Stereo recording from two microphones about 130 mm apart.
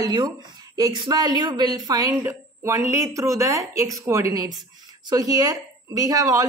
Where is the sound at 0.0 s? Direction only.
35° right (ahead or behind).